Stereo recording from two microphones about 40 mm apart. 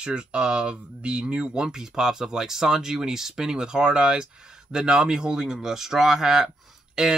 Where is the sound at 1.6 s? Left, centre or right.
Centre.